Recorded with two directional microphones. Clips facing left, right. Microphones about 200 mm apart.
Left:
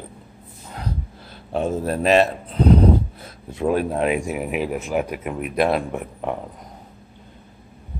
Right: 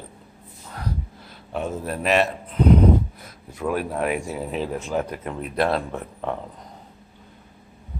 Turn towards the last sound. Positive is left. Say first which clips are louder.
# left 3 dB
turn(degrees=15)  # may be behind; listen again after turning